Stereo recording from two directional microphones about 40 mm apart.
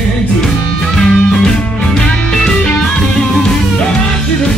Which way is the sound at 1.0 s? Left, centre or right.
Centre.